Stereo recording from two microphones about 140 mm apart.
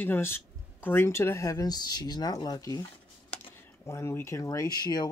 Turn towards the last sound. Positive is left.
turn(degrees=30)  # may be behind; listen again after turning